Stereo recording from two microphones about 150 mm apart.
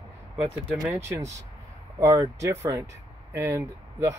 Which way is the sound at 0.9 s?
20° right (ahead or behind).